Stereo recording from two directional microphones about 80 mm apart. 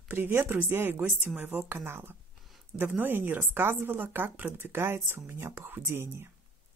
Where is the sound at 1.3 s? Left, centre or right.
Centre.